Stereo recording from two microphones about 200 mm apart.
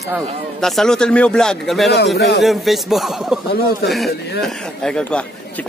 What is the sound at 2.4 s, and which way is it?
Speech, centre (ahead or behind).